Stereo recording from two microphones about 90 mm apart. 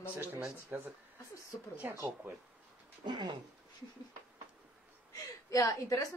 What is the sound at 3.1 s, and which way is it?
Speech, 55° right (ahead or behind).